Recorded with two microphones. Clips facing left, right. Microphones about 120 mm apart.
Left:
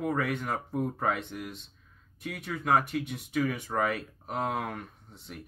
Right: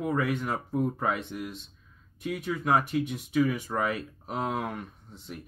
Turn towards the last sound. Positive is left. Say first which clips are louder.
# right 1 dB
turn(degrees=-5)  # may be behind; listen again after turning